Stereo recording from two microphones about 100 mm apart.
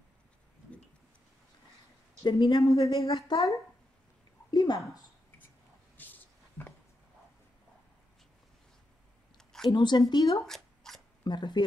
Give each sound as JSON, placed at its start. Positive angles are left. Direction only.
{"t": 2.2, "sound": "speech", "side_deg": 45}
{"t": 2.6, "sound": "a woman's voice", "side_deg": 35}
{"t": 4.5, "sound": "a woman's voice", "side_deg": 45}
{"t": 5.9, "sound": "a sound", "side_deg": 15}
{"t": 9.4, "sound": "a sound", "side_deg": 5}
{"t": 9.7, "sound": "speech", "side_deg": 50}
{"t": 10.4, "sound": "shuffling cards", "side_deg": 5}
{"t": 11.2, "sound": "speech", "side_deg": 50}